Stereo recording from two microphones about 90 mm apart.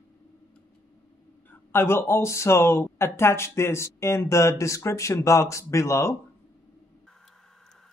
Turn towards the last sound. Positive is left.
turn(degrees=35)  # may be behind; listen again after turning